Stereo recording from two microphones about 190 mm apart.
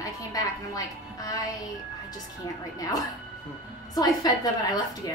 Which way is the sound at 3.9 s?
20° left (ahead or behind).